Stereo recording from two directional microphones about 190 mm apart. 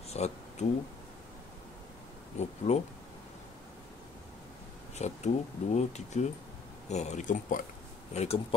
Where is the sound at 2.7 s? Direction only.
35° left (ahead or behind).